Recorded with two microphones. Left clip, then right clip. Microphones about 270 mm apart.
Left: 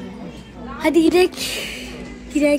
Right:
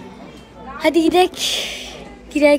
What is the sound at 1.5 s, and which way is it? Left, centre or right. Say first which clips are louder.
Speech: right 4 dB; right.